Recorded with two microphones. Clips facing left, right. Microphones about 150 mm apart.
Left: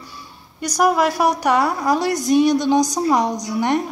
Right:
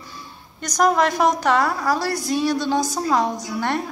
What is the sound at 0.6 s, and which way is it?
A woman's voice, 10° left (ahead or behind).